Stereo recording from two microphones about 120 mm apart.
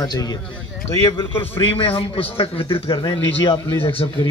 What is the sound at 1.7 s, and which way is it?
A man's voice, 50° left (ahead or behind).